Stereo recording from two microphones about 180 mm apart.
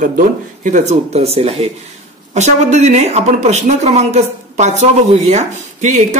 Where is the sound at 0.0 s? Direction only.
45° right (ahead or behind).